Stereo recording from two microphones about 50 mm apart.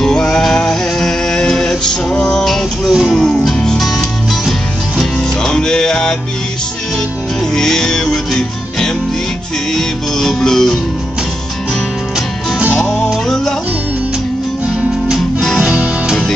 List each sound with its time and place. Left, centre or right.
0.0 s music: centre
2.9 s music: centre
3.4 s music: centre
5.4 s music: centre
7.5 s music: centre
12.7 s music: centre
15.6 s music: right